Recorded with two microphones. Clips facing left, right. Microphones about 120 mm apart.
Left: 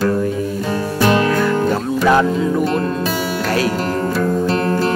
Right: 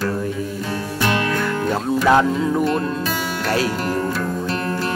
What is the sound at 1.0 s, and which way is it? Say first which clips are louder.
Music: left 6 dB; 35° left (ahead or behind).